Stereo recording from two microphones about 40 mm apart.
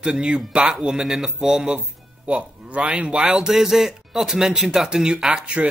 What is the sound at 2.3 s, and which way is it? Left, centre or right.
Speech, right.